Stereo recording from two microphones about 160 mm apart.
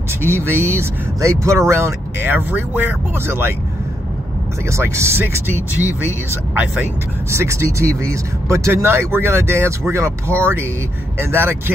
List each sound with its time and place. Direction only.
0.2 s speech: 15° right (ahead or behind)
4.6 s speech: 15° right (ahead or behind)
6.5 s speech: 10° right (ahead or behind)